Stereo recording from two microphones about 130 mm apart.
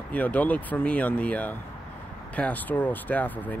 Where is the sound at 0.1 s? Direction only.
10° left (ahead or behind).